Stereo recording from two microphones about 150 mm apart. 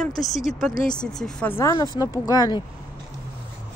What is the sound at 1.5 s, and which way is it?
Speech, 25° left (ahead or behind).